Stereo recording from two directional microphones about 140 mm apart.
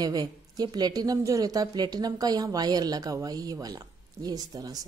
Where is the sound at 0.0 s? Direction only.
25° right (ahead or behind).